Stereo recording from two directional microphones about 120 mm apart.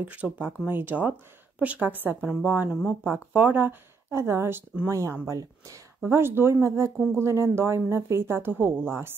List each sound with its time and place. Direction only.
0.0 s speech: 15° right (ahead or behind)